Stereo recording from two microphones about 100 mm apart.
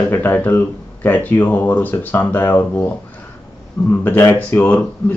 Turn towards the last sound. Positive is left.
turn(degrees=20)  # may be behind; listen again after turning